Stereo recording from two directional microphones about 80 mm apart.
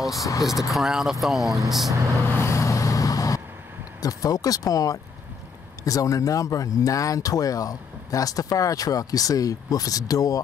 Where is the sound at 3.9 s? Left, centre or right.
Left.